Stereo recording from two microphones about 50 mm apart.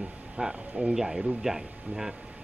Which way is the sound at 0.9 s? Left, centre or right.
Centre.